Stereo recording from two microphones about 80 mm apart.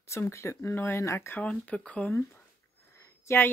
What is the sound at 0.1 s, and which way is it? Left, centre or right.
Speech, left.